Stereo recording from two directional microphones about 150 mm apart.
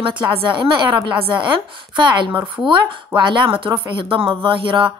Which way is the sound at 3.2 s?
35° right (ahead or behind).